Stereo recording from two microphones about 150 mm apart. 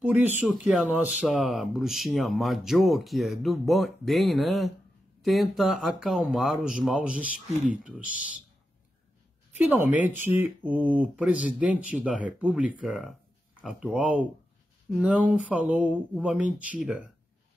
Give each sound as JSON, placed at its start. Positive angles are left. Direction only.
{"t": 0.0, "sound": "speech", "side_deg": -10}
{"t": 7.4, "sound": "speech", "side_deg": -45}
{"t": 8.0, "sound": "speech", "side_deg": 65}
{"t": 9.7, "sound": "speech", "side_deg": -10}